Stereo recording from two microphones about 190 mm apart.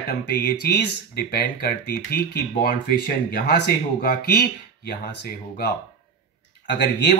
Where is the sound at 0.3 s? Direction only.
55° left (ahead or behind).